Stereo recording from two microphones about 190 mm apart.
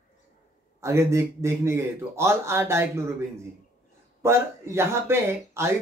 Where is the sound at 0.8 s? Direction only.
15° right (ahead or behind).